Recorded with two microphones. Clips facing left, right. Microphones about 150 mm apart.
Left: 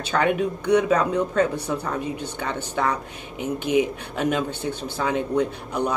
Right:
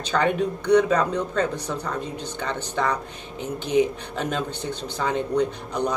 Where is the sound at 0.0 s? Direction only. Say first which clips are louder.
Left 1 dB; 10° left (ahead or behind).